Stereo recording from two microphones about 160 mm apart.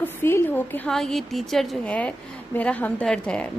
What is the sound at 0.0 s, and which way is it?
Speech, 15° left (ahead or behind).